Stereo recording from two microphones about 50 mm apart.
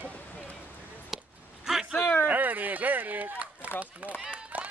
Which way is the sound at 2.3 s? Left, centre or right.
Right.